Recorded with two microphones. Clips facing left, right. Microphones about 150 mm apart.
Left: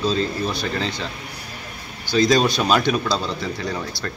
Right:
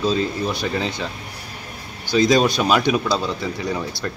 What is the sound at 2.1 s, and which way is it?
Speech, 20° right (ahead or behind).